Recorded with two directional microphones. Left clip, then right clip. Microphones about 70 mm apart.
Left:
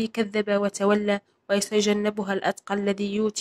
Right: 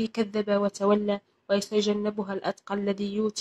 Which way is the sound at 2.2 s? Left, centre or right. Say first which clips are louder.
Left 5 dB; left.